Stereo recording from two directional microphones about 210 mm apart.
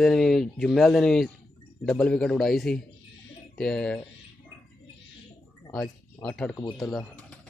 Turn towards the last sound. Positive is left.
turn(degrees=5)  # may be behind; listen again after turning